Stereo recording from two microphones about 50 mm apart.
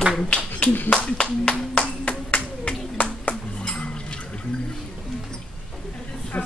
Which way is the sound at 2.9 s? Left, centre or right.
Left.